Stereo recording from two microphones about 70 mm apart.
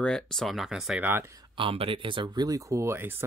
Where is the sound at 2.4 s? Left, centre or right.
Right.